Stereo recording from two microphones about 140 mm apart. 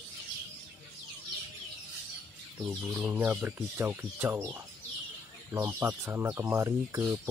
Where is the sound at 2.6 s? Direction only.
15° right (ahead or behind).